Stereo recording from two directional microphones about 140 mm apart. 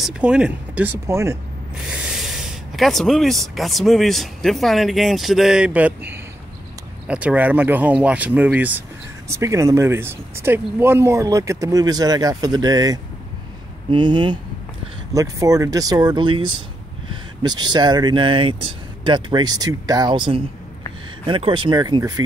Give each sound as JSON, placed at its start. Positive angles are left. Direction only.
{"t": 0.0, "sound": "speech", "side_deg": -5}
{"t": 1.9, "sound": "speech", "side_deg": -5}
{"t": 9.3, "sound": "speech", "side_deg": -20}